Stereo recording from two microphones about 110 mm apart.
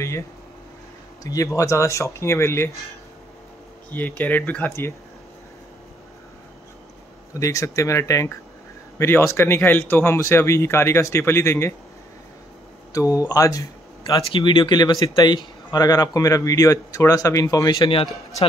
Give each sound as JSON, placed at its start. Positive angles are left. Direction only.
{"t": 1.2, "sound": "speech", "side_deg": 30}
{"t": 3.9, "sound": "speech", "side_deg": 15}
{"t": 7.3, "sound": "speech", "side_deg": 30}
{"t": 12.9, "sound": "speech", "side_deg": 30}